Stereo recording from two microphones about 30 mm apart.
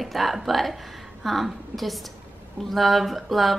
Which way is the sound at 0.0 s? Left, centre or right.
Centre.